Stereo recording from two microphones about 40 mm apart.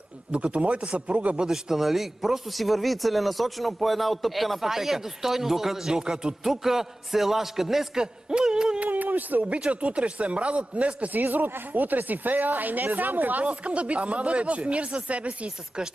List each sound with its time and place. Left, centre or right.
0.3 s speech: right
1.5 s a man's voice: centre
8.7 s a sound: right
9.7 s speech: right
11.1 s speech: right
13.4 s speech: right